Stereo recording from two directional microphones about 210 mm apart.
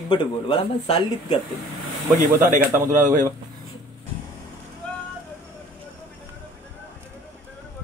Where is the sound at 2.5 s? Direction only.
40° right (ahead or behind).